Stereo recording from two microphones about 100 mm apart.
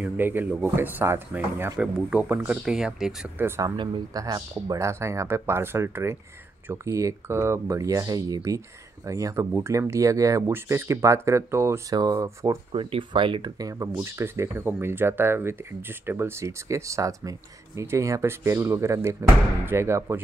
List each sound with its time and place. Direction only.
0.0 s speech: 20° right (ahead or behind)
1.8 s speech: 15° right (ahead or behind)
3.3 s speech: 25° right (ahead or behind)
3.7 s speech: 50° right (ahead or behind)
4.2 s speech: 35° right (ahead or behind)
11.9 s speech: 40° right (ahead or behind)
12.7 s speech: 55° right (ahead or behind)
13.6 s speech: 35° right (ahead or behind)